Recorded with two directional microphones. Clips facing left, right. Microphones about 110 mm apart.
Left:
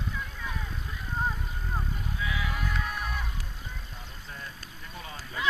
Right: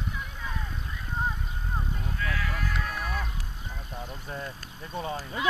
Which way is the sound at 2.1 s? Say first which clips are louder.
Right 1 dB; 10° left (ahead or behind).